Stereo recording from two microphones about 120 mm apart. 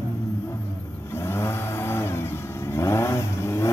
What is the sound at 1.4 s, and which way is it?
Vehicle, 20° left (ahead or behind).